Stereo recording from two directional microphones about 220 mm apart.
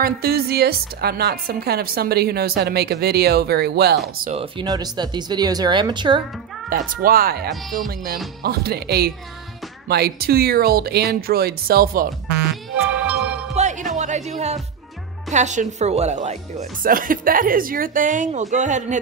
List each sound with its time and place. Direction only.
0.0 s a woman's voice: 45° right (ahead or behind)
4.2 s speech: 30° right (ahead or behind)
6.7 s a woman's voice: 40° right (ahead or behind)
12.9 s music: 5° right (ahead or behind)
13.6 s music: 35° right (ahead or behind)
13.9 s a woman's voice: 30° right (ahead or behind)